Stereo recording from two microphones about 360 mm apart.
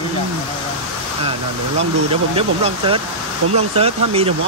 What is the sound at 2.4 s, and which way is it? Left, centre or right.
Speech, centre.